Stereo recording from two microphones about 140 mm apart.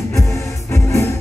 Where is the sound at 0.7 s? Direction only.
20° left (ahead or behind).